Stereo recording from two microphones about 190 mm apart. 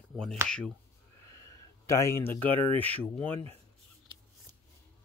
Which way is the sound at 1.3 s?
15° left (ahead or behind).